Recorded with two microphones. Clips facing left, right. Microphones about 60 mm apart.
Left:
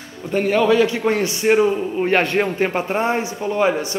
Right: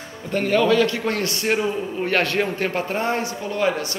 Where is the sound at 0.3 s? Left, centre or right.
Centre.